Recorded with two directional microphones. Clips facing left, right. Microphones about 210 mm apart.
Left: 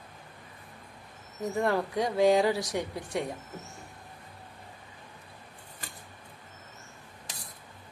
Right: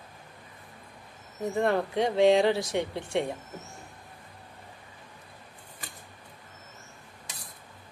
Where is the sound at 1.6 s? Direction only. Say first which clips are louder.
Right 2 dB; 25° right (ahead or behind).